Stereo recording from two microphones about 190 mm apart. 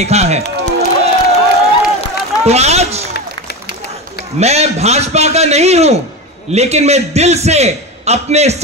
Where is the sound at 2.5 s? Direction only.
35° right (ahead or behind).